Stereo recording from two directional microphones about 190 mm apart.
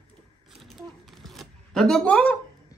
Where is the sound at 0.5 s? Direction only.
Centre (ahead or behind).